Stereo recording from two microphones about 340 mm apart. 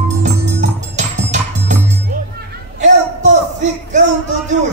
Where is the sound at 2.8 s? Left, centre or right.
Right.